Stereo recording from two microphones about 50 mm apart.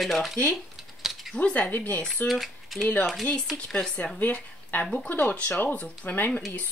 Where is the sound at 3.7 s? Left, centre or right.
Centre.